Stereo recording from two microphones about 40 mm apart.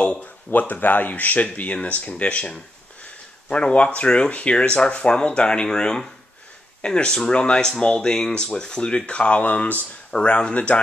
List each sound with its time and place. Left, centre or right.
0.0 s a sound: left
0.5 s speech: left
9.4 s speech: left